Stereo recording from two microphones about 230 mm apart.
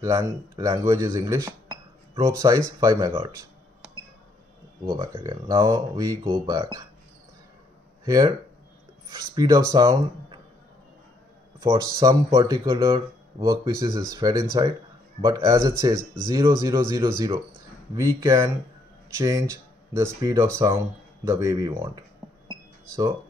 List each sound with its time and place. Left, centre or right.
0.0 s speech: centre
4.8 s speech: centre
8.0 s speech: centre
11.6 s speech: centre
22.2 s a sound: right